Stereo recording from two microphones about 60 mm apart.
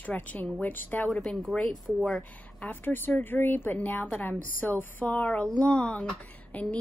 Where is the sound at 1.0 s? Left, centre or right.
Centre.